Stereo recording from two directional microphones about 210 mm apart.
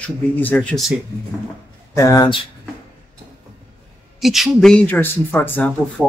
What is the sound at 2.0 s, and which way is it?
Speech, 15° left (ahead or behind).